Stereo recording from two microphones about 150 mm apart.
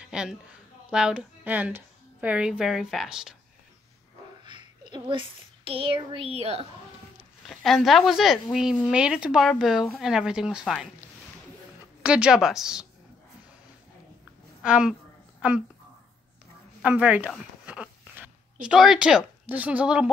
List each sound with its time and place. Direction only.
0.0 s a woman's voice: 5° right (ahead or behind)
4.5 s a sound: 30° right (ahead or behind)
5.7 s speech: 40° right (ahead or behind)
7.4 s speech: centre (ahead or behind)
12.0 s speech: 5° right (ahead or behind)
14.6 s a woman's voice: 5° right (ahead or behind)
16.8 s a woman's voice: 10° right (ahead or behind)